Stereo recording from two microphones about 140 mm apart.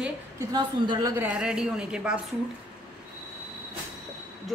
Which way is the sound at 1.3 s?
5° right (ahead or behind).